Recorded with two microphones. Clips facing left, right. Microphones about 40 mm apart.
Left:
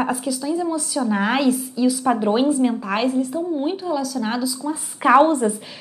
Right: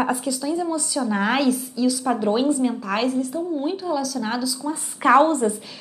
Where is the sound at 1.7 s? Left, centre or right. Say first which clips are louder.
Left 3 dB; centre.